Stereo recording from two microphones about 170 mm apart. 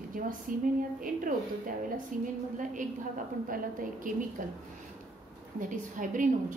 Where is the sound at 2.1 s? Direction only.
50° right (ahead or behind).